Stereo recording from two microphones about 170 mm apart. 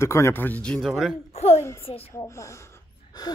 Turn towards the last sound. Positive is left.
turn(degrees=20)  # may be behind; listen again after turning